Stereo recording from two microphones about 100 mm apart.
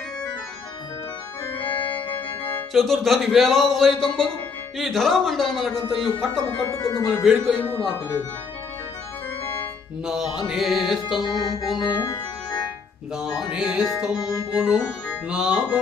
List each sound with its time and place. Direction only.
1.6 s organ: 20° left (ahead or behind)
2.1 s music: 20° left (ahead or behind)
2.7 s speech: 5° left (ahead or behind)
6.7 s speech: 35° left (ahead or behind)
7.2 s speech: centre (ahead or behind)
10.0 s speech: 5° right (ahead or behind)
11.2 s music: 45° left (ahead or behind)
11.6 s organ: 50° left (ahead or behind)
13.5 s speech: 5° right (ahead or behind)
15.2 s music: 10° right (ahead or behind)